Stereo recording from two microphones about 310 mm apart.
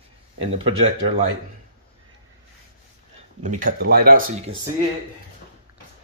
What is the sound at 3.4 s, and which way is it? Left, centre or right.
Speech, right.